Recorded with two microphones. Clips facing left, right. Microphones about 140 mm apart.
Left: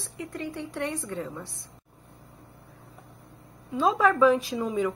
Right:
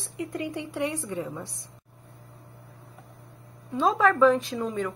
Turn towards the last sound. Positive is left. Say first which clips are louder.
# left 2 dB
turn(degrees=5)  # may be behind; listen again after turning